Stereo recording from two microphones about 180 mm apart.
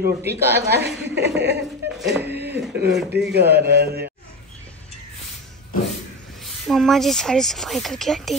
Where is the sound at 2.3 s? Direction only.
70° right (ahead or behind).